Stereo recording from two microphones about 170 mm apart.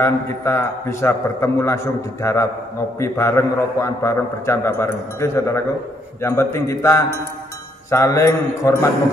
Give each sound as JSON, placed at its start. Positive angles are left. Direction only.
{"t": 0.0, "sound": "a man's voice", "side_deg": 15}